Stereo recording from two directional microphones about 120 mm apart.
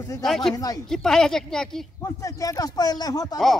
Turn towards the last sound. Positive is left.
turn(degrees=30)  # may be behind; listen again after turning